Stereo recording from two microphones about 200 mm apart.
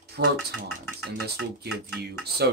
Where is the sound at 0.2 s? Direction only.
55° right (ahead or behind).